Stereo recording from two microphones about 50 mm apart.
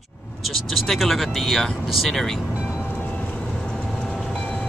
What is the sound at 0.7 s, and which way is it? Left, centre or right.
Speech, centre.